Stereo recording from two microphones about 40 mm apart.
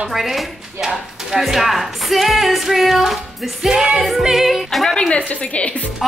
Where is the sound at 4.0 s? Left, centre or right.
Centre.